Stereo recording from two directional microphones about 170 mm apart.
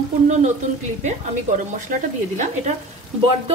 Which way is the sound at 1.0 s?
45° right (ahead or behind).